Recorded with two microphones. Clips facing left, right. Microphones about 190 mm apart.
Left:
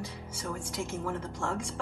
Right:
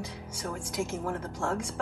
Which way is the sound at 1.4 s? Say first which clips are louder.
Right 4 dB; centre (ahead or behind).